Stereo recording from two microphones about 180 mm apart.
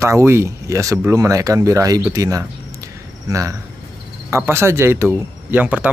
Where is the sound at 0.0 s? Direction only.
15° right (ahead or behind).